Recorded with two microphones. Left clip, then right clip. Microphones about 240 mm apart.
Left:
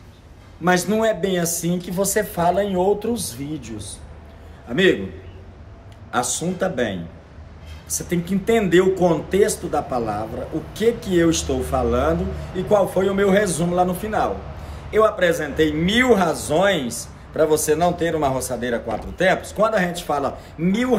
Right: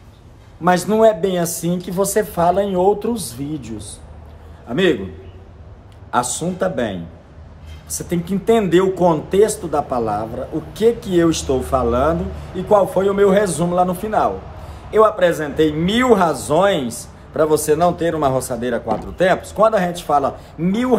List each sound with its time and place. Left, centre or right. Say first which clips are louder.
0.7 s a man's voice: right 5 dB; centre
6.1 s a man's voice: right 3 dB; centre